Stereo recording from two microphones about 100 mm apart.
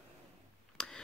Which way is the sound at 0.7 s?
5° left (ahead or behind).